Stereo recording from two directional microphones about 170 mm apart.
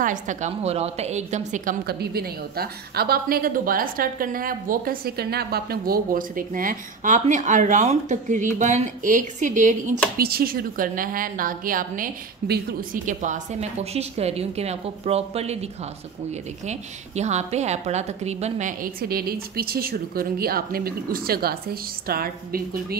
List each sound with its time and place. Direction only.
0.0 s a woman's voice: 50° right (ahead or behind)
1.9 s a woman's voice: 70° right (ahead or behind)